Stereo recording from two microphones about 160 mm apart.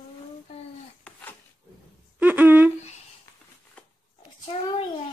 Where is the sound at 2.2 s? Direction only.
10° right (ahead or behind).